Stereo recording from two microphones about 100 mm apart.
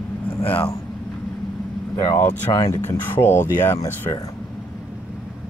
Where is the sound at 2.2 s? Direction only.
35° left (ahead or behind).